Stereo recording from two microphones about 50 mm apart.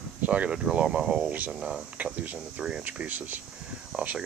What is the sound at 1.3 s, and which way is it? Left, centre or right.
Speech, right.